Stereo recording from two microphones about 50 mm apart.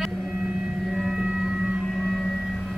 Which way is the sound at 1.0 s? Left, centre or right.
Centre.